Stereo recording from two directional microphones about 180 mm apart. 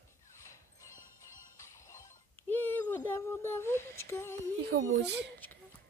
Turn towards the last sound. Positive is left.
turn(degrees=-70)  # may be behind; listen again after turning